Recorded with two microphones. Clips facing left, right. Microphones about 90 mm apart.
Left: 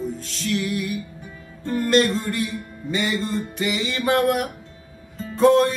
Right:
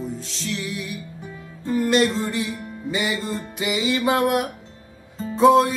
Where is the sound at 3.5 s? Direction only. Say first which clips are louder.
Right 2 dB; 10° right (ahead or behind).